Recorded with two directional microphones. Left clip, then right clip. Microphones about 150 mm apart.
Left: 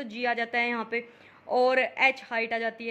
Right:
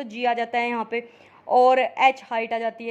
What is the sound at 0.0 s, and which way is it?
A woman's voice, 15° right (ahead or behind).